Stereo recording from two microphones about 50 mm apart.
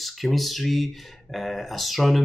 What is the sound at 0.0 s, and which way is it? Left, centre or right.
Speech, centre.